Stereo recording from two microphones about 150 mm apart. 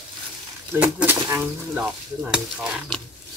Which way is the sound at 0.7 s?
10° right (ahead or behind).